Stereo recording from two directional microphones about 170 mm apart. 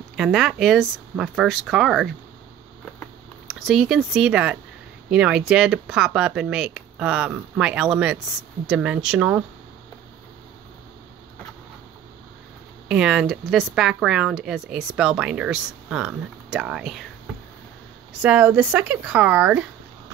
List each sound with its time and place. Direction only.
0.1 s speech: centre (ahead or behind)
2.8 s a sound: 5° left (ahead or behind)
5.1 s speech: 5° right (ahead or behind)
12.8 s speech: 5° right (ahead or behind)
18.2 s speech: 10° right (ahead or behind)